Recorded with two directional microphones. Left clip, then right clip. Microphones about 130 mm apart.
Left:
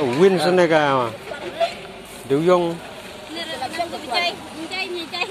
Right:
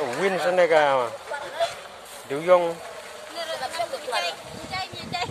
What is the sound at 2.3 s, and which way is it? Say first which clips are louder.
Speech: left 2 dB; 35° right (ahead or behind).